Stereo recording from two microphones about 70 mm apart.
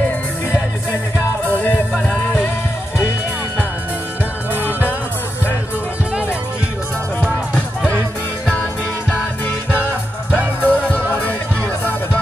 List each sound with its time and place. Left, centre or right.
1.4 s music: left
10.6 s music: left